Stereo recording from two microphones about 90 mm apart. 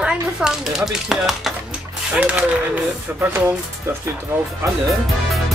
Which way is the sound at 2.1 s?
15° right (ahead or behind).